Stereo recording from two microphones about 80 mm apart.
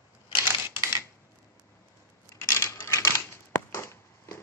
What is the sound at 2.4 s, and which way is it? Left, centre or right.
Typewriter, left.